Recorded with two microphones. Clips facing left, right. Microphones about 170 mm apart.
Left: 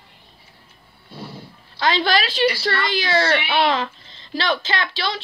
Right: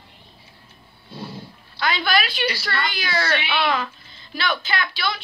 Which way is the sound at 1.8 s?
35° left (ahead or behind).